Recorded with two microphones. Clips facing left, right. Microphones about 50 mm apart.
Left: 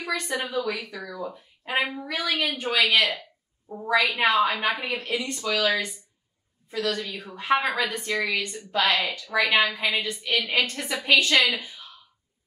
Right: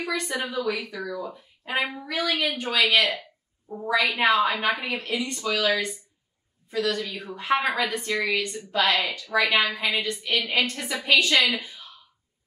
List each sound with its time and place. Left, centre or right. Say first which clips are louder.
0.0 s speech: even; centre
0.4 s speech: left 1 dB; left
0.7 s a woman's voice: right 3 dB; centre
6.7 s a woman's voice: right 1 dB; centre
11.5 s a sound: right 1 dB; centre